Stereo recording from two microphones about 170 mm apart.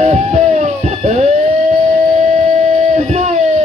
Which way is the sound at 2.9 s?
40° right (ahead or behind).